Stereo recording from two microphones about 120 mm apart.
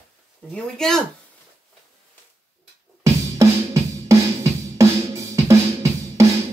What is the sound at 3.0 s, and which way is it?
Music, 25° right (ahead or behind).